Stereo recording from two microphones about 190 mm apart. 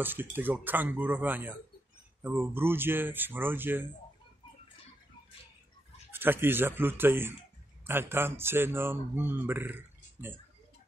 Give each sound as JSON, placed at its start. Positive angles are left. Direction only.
{"t": 0.0, "sound": "speech", "side_deg": -10}
{"t": 6.1, "sound": "speech", "side_deg": -10}